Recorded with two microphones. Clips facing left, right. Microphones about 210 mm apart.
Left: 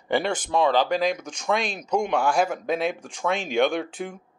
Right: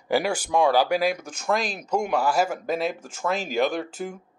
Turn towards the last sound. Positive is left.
turn(degrees=0)  # may be behind; listen again after turning